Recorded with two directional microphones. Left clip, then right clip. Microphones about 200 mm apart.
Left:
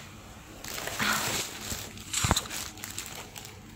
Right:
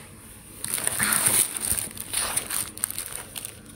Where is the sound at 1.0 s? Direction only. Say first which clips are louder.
Right 1 dB; centre (ahead or behind).